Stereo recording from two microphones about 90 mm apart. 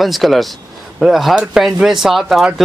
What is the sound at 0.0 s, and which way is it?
Speech, centre (ahead or behind).